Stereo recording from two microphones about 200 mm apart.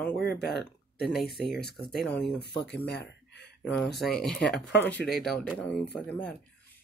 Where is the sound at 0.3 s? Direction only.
55° left (ahead or behind).